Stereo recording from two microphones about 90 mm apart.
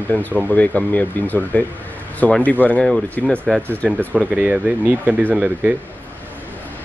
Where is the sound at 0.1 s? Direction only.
20° left (ahead or behind).